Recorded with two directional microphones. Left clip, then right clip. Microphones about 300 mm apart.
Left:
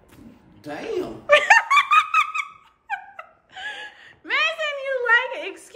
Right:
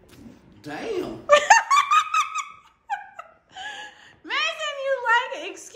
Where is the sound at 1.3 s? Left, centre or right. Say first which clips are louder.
Left 1 dB; centre.